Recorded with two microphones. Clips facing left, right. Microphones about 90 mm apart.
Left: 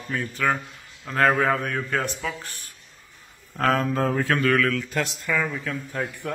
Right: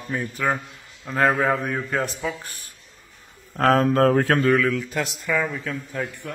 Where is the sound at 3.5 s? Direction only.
45° right (ahead or behind).